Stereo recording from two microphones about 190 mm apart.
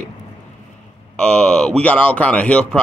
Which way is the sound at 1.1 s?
5° left (ahead or behind).